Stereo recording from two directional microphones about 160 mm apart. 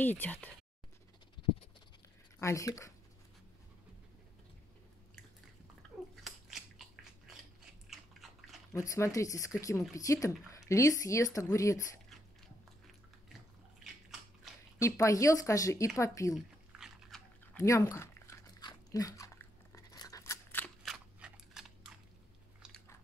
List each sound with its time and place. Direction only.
0.0 s speech: 10° left (ahead or behind)
2.3 s a woman's voice: 20° left (ahead or behind)
5.8 s bathtub: centre (ahead or behind)
7.9 s biting: centre (ahead or behind)
8.7 s speech: 20° left (ahead or behind)
14.8 s speech: 20° left (ahead or behind)
16.7 s biting: centre (ahead or behind)
17.6 s biting: 20° left (ahead or behind)
20.8 s crunch: centre (ahead or behind)